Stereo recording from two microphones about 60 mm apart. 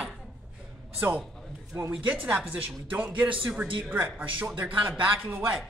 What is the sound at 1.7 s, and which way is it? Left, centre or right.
A woman's voice, right.